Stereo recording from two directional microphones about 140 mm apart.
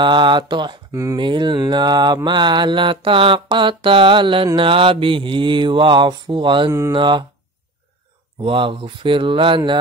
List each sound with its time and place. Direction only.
0.0 s mantra: 35° right (ahead or behind)
8.4 s mantra: 35° right (ahead or behind)